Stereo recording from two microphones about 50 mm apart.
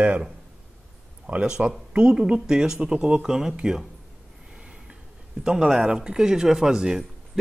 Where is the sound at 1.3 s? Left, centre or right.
Right.